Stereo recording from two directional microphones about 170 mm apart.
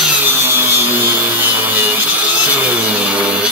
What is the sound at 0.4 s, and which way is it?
Wood, 15° right (ahead or behind).